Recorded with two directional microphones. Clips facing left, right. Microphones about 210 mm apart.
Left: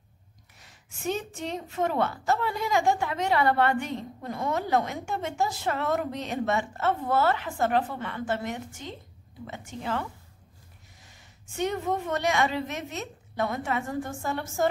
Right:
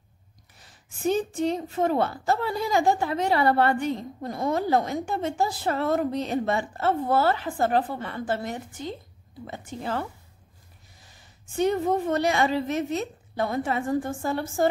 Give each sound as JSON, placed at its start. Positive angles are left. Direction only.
{"t": 0.6, "sound": "a woman's voice", "side_deg": -35}